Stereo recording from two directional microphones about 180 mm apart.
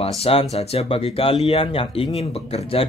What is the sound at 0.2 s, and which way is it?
Speech, 35° left (ahead or behind).